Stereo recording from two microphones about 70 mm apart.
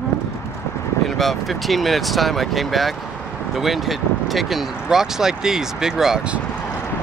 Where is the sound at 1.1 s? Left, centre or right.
Centre.